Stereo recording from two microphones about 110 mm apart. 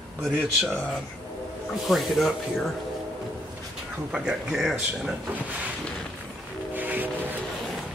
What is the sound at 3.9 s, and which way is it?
Speech, 10° right (ahead or behind).